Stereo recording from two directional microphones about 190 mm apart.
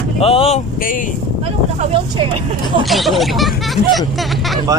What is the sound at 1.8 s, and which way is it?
Speech, 30° right (ahead or behind).